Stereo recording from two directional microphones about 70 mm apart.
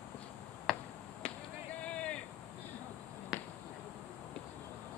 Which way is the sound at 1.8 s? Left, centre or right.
Centre.